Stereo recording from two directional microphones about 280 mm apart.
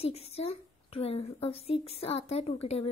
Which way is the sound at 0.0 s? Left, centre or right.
Left.